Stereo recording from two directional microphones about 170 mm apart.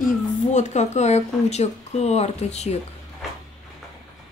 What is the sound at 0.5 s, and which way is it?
Speech, 45° left (ahead or behind).